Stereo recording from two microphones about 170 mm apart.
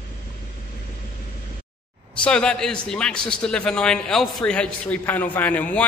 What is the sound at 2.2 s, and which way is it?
A man's voice, 5° left (ahead or behind).